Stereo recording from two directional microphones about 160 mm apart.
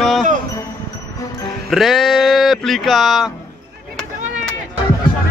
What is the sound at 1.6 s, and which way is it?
Speech, centre (ahead or behind).